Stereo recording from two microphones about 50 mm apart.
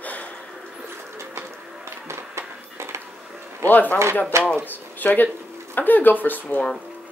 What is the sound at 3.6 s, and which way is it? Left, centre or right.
Speech, left.